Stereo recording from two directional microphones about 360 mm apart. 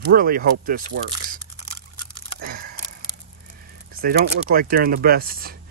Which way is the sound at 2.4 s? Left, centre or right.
Right.